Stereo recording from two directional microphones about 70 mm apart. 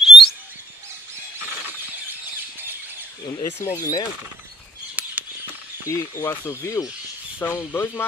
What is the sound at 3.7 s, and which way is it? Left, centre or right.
Speech, left.